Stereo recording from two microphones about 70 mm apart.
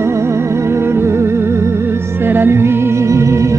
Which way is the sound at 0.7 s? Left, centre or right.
Right.